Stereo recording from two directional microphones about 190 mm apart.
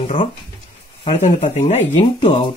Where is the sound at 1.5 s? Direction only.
35° left (ahead or behind).